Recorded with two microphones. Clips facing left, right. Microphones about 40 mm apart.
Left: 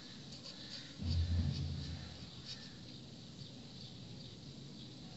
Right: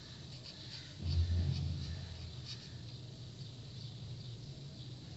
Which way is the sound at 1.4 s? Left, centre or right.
Centre.